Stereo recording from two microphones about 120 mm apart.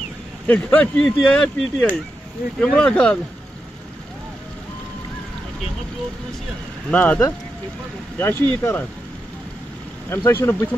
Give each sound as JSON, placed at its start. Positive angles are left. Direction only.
{"t": 0.5, "sound": "speech", "side_deg": 15}
{"t": 6.9, "sound": "speech", "side_deg": 10}
{"t": 10.0, "sound": "speech", "side_deg": 20}